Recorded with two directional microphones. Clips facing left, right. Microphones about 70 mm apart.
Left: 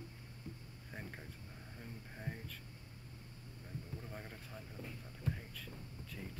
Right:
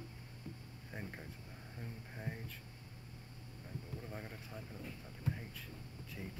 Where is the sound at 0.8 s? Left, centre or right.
Centre.